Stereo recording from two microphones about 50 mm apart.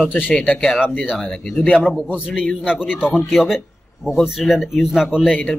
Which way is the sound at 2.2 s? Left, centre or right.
Centre.